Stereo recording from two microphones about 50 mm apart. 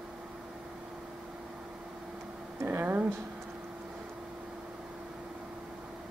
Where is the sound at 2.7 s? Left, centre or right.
Right.